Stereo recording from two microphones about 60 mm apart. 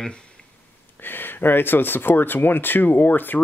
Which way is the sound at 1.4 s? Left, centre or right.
Left.